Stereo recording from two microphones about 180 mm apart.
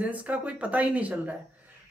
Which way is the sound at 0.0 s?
5° right (ahead or behind).